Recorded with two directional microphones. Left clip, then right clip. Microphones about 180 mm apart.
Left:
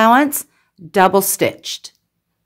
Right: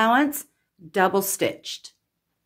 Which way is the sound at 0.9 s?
40° left (ahead or behind).